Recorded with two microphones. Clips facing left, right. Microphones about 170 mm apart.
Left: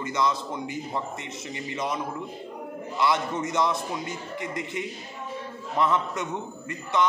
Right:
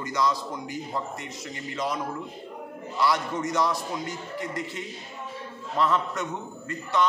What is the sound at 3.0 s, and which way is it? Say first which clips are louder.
A man's voice: even; 20° left (ahead or behind).